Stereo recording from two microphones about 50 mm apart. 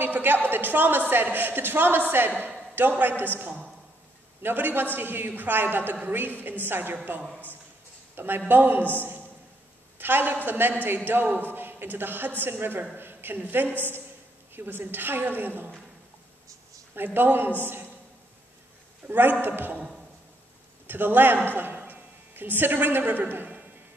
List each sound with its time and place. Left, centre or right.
0.0 s a woman's voice: right
8.5 s a woman's voice: right
16.9 s a woman's voice: right
19.0 s a woman's voice: right
20.8 s a man's voice: right
21.5 s a sound: right